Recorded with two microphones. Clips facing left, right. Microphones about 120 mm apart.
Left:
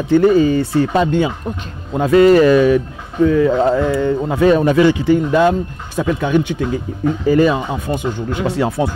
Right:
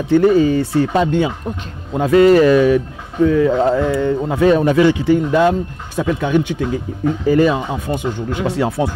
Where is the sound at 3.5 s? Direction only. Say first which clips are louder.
Left 1 dB; 20° left (ahead or behind).